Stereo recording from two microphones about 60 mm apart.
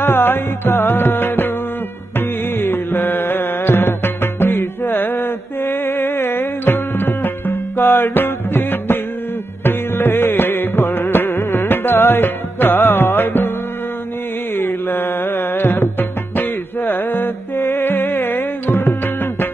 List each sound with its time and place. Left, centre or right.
0.0 s music: left
14.6 s music: left